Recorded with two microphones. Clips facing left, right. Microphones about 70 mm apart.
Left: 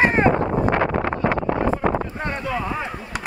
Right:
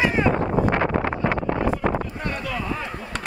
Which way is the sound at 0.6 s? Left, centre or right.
Left.